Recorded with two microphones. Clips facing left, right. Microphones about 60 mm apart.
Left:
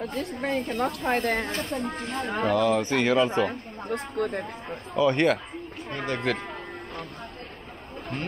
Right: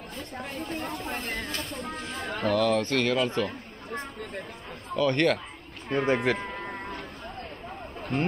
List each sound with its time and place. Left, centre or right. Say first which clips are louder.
0.4 s speech: left 7 dB; left
1.6 s speech: left 6 dB; centre
2.3 s speech: left 1 dB; centre
4.2 s speech: left 11 dB; left
4.9 s speech: left 2 dB; centre
5.9 s speech: right 4 dB; centre